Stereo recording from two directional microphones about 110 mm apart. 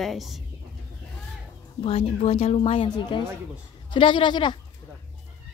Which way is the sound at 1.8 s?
60° left (ahead or behind).